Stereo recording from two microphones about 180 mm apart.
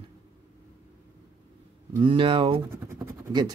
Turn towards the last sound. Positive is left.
turn(degrees=-20)  # may be behind; listen again after turning